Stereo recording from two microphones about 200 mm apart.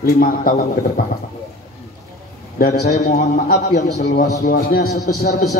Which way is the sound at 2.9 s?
35° left (ahead or behind).